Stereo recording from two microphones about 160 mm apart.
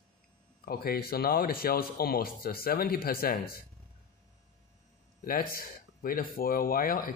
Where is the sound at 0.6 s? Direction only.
70° left (ahead or behind).